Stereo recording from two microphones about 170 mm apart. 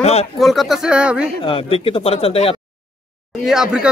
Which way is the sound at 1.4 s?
35° left (ahead or behind).